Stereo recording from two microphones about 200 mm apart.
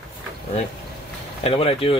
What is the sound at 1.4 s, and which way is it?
Speech, 30° left (ahead or behind).